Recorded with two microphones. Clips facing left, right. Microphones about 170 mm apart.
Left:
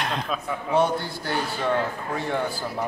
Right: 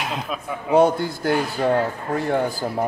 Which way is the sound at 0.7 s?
45° right (ahead or behind).